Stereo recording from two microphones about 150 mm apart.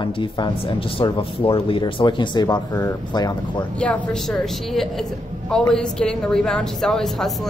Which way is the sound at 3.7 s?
5° left (ahead or behind).